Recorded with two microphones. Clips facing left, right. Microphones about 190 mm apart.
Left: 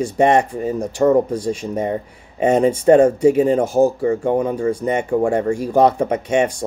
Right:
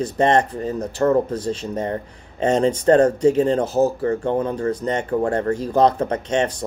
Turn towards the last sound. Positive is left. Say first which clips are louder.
# left 3 dB
turn(degrees=10)  # may be behind; listen again after turning